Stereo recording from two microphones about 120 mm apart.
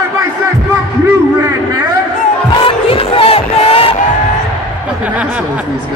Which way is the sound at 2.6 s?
50° left (ahead or behind).